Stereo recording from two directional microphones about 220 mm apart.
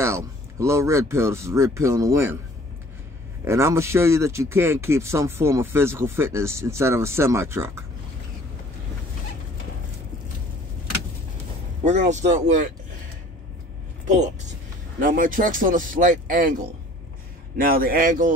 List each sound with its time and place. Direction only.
0.0 s speech: 10° right (ahead or behind)
3.4 s speech: 15° right (ahead or behind)
11.8 s speech: 30° right (ahead or behind)
14.0 s speech: 35° right (ahead or behind)
17.6 s speech: 40° right (ahead or behind)